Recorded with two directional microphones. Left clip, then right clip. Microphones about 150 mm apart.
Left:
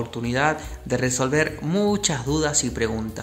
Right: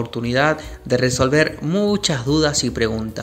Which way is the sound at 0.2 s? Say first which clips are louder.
Right 4 dB; 15° right (ahead or behind).